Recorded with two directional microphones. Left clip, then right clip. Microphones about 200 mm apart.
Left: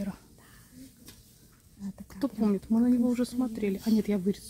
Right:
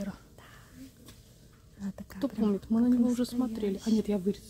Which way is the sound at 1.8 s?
15° right (ahead or behind).